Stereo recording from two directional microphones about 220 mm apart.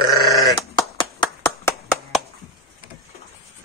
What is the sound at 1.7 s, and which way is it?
Clapping, centre (ahead or behind).